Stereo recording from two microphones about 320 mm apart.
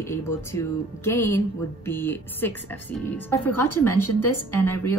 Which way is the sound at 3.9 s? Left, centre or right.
Left.